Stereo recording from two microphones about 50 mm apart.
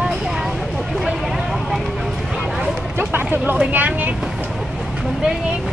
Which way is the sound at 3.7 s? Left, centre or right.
Right.